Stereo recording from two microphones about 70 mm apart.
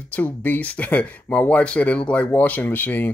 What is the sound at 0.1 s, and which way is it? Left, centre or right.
Speech, left.